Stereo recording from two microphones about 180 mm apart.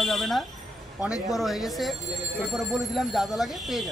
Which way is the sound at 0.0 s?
Centre (ahead or behind).